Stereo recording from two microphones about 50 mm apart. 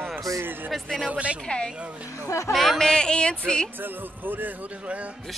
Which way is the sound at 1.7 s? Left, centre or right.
Right.